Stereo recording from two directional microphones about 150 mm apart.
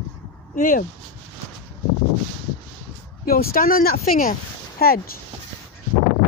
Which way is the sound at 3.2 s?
75° left (ahead or behind).